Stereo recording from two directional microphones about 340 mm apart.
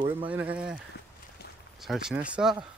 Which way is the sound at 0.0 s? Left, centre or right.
Centre.